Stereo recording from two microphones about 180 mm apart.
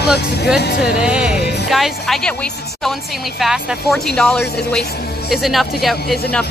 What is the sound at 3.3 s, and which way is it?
A woman's voice, centre (ahead or behind).